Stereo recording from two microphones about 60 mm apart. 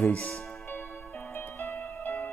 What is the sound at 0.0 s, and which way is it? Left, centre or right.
Speech, left.